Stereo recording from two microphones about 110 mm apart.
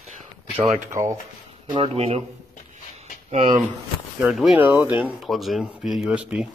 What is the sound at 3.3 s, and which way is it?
Speech, 90° right.